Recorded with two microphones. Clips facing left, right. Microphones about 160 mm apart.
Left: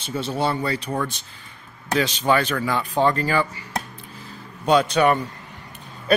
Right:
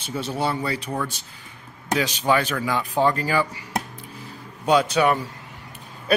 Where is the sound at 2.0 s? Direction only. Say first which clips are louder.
Left 2 dB; 10° right (ahead or behind).